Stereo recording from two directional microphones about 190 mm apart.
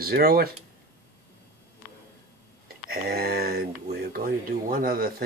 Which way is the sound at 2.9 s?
55° right (ahead or behind).